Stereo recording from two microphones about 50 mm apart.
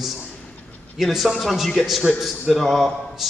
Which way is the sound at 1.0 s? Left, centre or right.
Centre.